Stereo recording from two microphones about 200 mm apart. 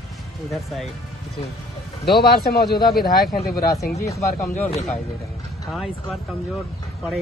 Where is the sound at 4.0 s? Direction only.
15° left (ahead or behind).